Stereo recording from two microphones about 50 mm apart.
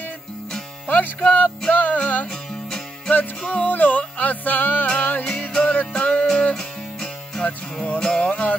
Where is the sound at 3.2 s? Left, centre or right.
Left; by 8.3 s centre.